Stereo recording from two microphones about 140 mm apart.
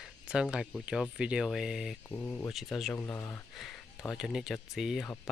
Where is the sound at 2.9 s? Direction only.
20° left (ahead or behind).